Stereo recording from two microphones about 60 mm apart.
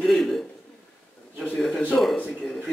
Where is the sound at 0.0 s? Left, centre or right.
Centre.